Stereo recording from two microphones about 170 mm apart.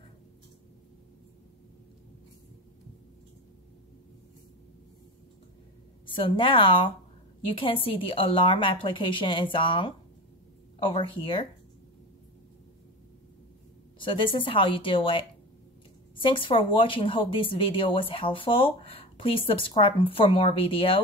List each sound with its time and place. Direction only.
6.0 s speech: 30° left (ahead or behind)
13.9 s speech: 30° left (ahead or behind)